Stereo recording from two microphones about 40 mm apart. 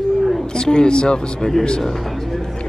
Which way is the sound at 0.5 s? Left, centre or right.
Centre.